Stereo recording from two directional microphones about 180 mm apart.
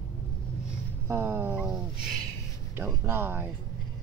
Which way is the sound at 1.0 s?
15° right (ahead or behind).